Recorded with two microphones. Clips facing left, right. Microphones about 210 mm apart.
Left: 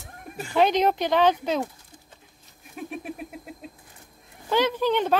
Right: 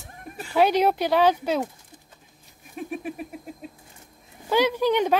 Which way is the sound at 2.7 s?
Centre (ahead or behind).